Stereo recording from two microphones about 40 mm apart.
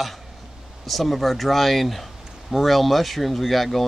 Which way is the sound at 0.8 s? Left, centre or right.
Centre.